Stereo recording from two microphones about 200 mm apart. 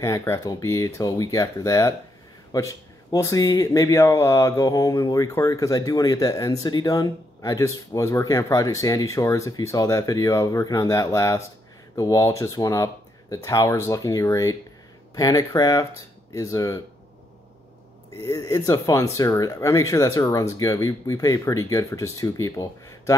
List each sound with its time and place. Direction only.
0.0 s speech: 15° left (ahead or behind)
18.2 s speech: 15° left (ahead or behind)